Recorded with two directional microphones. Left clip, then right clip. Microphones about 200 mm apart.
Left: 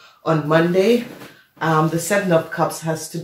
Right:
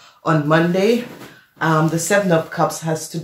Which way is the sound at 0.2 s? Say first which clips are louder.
Right 1 dB; 35° right (ahead or behind).